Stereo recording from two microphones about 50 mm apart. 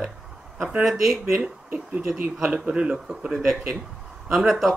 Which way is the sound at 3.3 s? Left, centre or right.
Centre.